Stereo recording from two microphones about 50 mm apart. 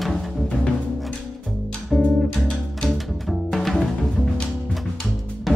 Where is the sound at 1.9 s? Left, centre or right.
Centre.